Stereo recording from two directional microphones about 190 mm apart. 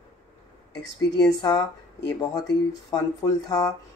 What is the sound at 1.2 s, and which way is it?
Speech, 20° left (ahead or behind).